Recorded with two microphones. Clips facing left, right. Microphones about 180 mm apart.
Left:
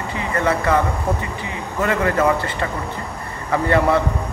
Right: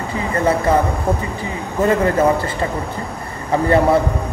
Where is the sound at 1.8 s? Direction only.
30° right (ahead or behind).